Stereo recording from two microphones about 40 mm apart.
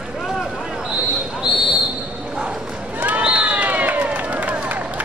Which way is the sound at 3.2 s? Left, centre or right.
Right.